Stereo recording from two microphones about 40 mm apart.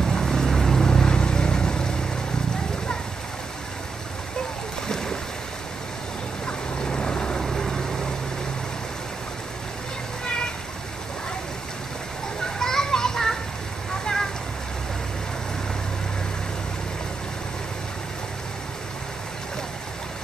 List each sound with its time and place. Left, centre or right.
0.0 s vehicle: centre
4.8 s boat: centre
6.4 s boat: centre
7.4 s vehicle: centre
12.5 s children playing: centre